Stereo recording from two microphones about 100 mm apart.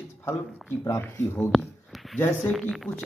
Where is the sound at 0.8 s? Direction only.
30° left (ahead or behind).